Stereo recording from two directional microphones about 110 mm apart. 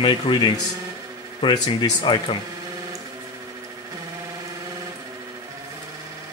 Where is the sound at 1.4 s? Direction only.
45° left (ahead or behind).